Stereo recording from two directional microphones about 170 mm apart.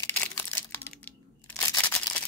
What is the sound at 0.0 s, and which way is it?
Crumpling, 15° left (ahead or behind).